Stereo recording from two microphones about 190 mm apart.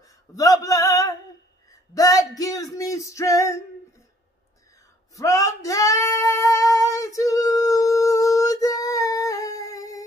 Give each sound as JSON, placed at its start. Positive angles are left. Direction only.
{"t": 0.0, "sound": "speech", "side_deg": 15}
{"t": 1.7, "sound": "a sound", "side_deg": 20}
{"t": 5.1, "sound": "female singing", "side_deg": 15}